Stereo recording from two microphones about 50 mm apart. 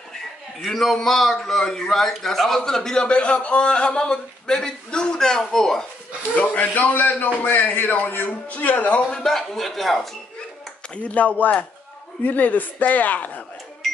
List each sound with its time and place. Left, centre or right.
0.6 s a man's voice: centre
6.3 s a man's voice: left
9.2 s speech: centre
11.0 s a man's voice: left